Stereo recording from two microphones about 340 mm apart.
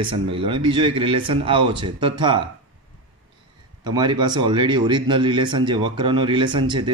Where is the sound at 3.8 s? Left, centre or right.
Centre.